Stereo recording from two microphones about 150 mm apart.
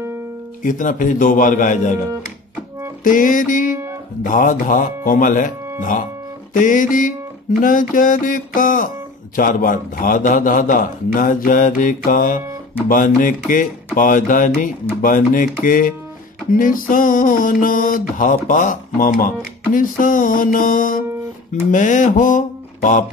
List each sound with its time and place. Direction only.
0.6 s speech: 60° left (ahead or behind)
3.0 s speech: 65° left (ahead or behind)
21.6 s mantra: 60° left (ahead or behind)